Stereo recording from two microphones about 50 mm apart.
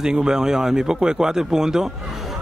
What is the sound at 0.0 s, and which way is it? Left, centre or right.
Speech, centre.